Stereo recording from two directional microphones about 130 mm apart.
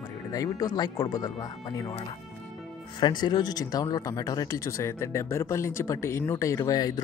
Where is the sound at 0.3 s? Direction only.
25° left (ahead or behind).